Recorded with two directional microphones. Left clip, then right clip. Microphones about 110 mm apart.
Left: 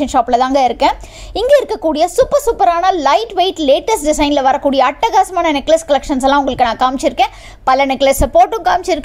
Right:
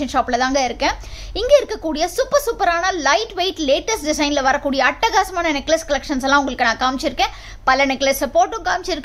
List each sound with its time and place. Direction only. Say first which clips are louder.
0.0 s speech: left 6 dB; 50° left (ahead or behind)